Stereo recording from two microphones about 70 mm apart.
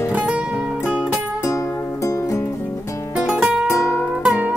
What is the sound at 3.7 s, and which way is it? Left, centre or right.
Music, left.